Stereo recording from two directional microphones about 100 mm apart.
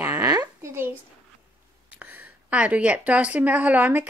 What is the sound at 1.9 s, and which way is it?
Speech, 15° right (ahead or behind).